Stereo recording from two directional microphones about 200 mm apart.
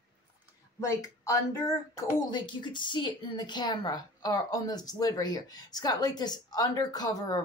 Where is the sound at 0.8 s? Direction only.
15° left (ahead or behind).